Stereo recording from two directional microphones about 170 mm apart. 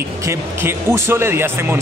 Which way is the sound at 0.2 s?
15° right (ahead or behind).